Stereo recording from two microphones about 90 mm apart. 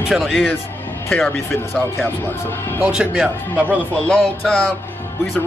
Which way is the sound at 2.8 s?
10° right (ahead or behind).